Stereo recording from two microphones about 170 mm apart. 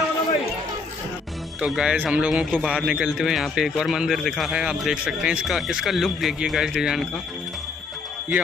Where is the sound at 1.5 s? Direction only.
5° right (ahead or behind).